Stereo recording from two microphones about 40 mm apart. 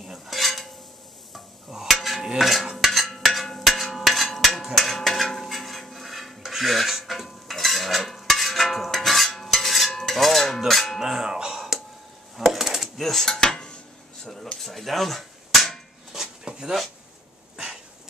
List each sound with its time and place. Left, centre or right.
0.3 s cutlery: centre
1.7 s dishes: centre
2.0 s cutlery: centre
2.2 s a sound: centre
4.7 s dishes: centre
6.4 s cutlery: centre
11.0 s music: centre
12.4 s a sound: centre
13.0 s dishes: centre
13.4 s dishes: left
14.2 s a sound: centre
14.6 s cap gun: centre
16.1 s a sound: centre